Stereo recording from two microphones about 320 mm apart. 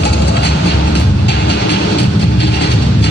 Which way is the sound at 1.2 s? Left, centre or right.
Left.